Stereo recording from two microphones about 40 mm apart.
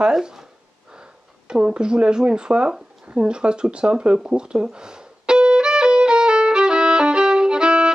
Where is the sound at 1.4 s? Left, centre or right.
Right.